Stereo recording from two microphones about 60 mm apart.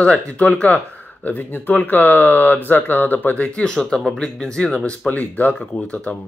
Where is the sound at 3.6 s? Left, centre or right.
Centre.